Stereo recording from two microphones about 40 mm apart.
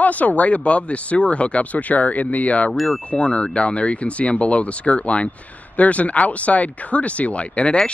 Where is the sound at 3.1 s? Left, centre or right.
Left.